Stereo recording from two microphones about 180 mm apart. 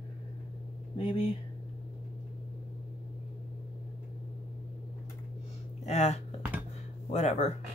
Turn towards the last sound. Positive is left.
turn(degrees=40)  # may be behind; listen again after turning